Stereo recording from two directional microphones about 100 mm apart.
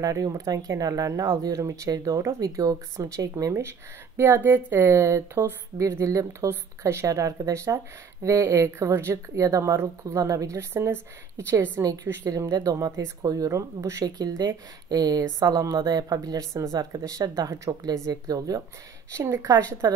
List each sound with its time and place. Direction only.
0.0 s a woman's voice: 35° right (ahead or behind)
4.2 s a woman's voice: 20° right (ahead or behind)
11.8 s a woman's voice: 35° right (ahead or behind)
19.1 s speech: 25° right (ahead or behind)
19.4 s a woman's voice: 40° right (ahead or behind)